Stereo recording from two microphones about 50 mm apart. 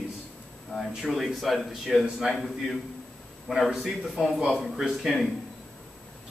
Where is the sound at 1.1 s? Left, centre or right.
Centre.